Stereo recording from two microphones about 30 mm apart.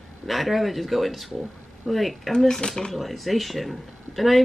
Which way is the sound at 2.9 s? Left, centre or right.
Centre.